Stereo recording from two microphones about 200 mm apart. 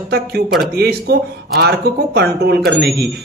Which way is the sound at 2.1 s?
55° right (ahead or behind).